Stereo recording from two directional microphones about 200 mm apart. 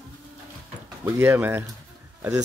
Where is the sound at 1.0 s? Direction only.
10° right (ahead or behind).